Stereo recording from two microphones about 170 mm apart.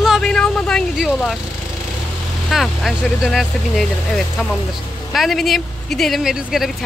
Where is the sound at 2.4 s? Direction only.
Centre (ahead or behind).